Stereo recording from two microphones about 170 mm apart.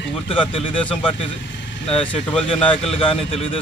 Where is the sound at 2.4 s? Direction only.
35° left (ahead or behind).